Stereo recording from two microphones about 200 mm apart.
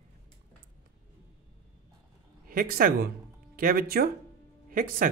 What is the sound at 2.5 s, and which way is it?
Speech, 45° right (ahead or behind).